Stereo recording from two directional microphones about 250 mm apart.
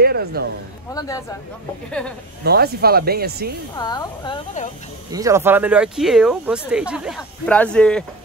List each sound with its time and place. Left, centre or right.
0.0 s speech: right
0.9 s a woman's voice: centre
1.9 s speech: centre
2.4 s speech: right
3.7 s a woman's voice: centre
5.1 s speech: centre